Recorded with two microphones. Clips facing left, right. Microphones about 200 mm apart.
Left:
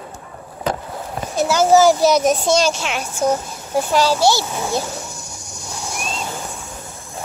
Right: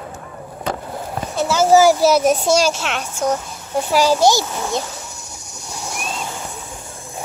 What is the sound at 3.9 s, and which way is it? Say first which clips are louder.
Speech: right 2 dB; 15° right (ahead or behind).